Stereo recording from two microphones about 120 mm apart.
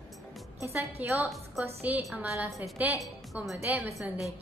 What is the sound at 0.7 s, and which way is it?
A woman's voice, 20° right (ahead or behind).